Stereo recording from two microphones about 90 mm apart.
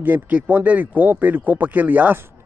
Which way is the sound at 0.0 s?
15° right (ahead or behind).